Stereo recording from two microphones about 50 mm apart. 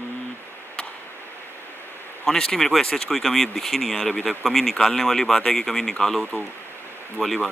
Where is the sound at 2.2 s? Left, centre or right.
Centre.